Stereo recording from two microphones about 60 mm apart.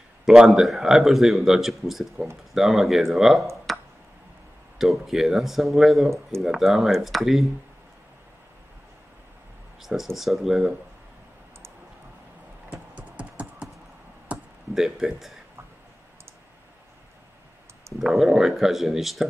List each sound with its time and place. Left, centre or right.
0.2 s speech: centre
3.7 s a sound: centre
4.7 s speech: centre
9.8 s speech: centre
12.6 s typing: right
14.7 s speech: centre
17.9 s speech: centre